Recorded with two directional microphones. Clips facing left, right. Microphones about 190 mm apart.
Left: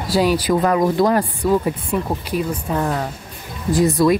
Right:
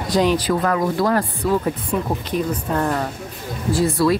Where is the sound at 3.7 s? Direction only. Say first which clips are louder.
Left 3 dB; 15° left (ahead or behind).